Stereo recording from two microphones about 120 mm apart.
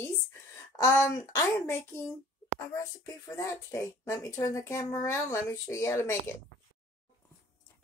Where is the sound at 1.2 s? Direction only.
25° left (ahead or behind).